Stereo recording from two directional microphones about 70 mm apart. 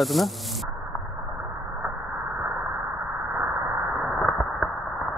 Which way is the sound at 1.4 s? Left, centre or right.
Centre.